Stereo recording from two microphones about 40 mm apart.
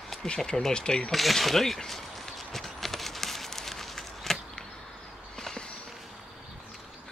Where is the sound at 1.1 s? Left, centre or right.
Centre.